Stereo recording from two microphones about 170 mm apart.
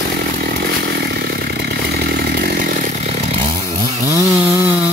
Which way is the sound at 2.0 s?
65° right (ahead or behind).